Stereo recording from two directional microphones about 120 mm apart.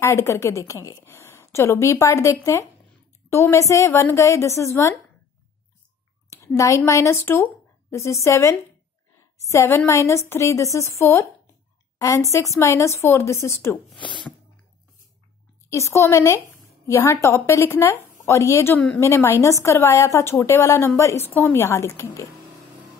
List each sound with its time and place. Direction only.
0.0 s a woman's voice: 25° left (ahead or behind)
6.3 s a woman's voice: 25° left (ahead or behind)
15.7 s a woman's voice: 25° left (ahead or behind)